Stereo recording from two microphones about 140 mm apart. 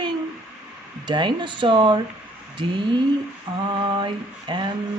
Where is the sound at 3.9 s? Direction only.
35° right (ahead or behind).